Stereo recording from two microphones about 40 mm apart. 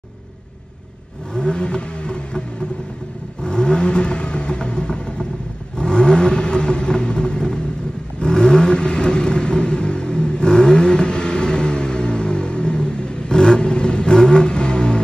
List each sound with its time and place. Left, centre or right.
1.3 s vehicle: left
3.4 s vehicle: left